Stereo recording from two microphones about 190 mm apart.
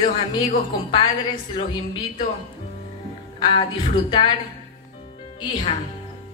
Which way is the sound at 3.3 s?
25° left (ahead or behind).